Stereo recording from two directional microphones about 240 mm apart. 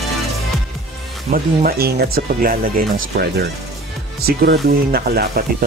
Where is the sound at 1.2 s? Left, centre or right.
Right.